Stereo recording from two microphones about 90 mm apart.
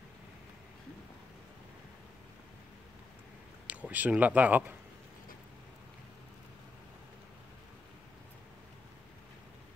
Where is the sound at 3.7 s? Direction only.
15° right (ahead or behind).